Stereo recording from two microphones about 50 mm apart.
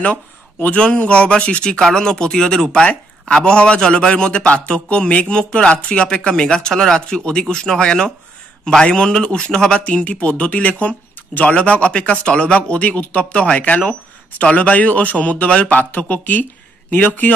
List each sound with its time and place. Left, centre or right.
0.7 s a man's voice: left